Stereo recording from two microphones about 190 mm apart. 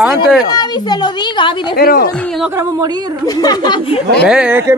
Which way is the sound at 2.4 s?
15° right (ahead or behind).